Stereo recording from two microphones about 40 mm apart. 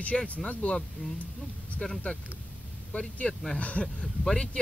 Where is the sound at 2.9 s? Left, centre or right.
Left.